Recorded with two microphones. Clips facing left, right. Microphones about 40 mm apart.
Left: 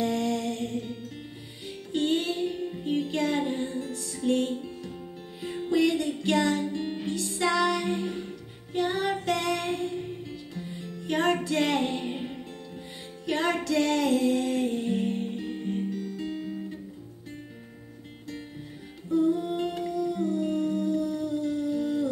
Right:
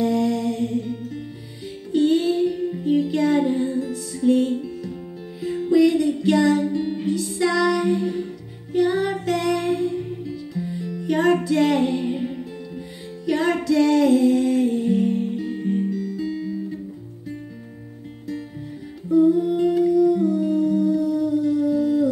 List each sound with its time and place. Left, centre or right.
0.0 s music: left
2.6 s music: centre
2.9 s music: left
11.4 s female singing: left
13.2 s music: left
19.0 s humming: left
20.2 s music: left